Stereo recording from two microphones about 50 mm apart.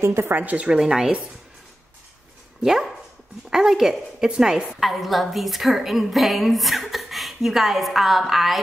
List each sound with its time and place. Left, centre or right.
0.0 s speech: right
0.7 s a woman's voice: centre
2.6 s a woman's voice: centre
4.7 s a woman's voice: centre